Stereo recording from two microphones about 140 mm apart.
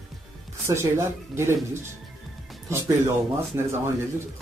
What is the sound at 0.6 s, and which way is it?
Speech, 20° right (ahead or behind).